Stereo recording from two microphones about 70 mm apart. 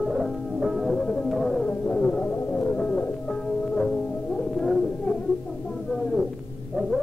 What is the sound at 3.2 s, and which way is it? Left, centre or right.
Music, centre.